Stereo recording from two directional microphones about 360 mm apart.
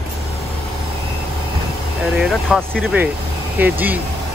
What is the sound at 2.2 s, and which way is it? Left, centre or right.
Speech, centre.